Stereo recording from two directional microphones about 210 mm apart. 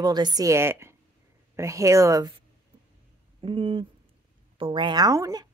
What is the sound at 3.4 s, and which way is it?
Speech, 25° right (ahead or behind).